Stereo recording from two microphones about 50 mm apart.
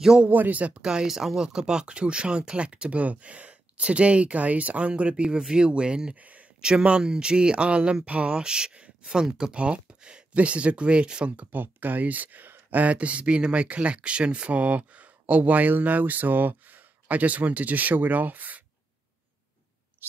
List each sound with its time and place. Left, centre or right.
0.3 s speech: right
0.8 s speech: centre
6.1 s a sound: right
6.6 s speech: centre
11.5 s speech: right
20.0 s owl: right